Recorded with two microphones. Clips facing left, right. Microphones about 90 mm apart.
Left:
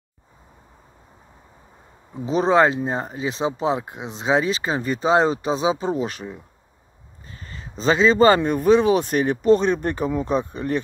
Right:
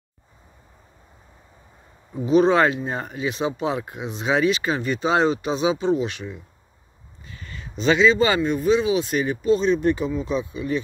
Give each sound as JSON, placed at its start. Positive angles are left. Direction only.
{"t": 2.2, "sound": "speech", "side_deg": 35}